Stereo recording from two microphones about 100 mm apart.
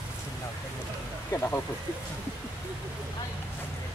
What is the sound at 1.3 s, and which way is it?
Speech, 25° left (ahead or behind).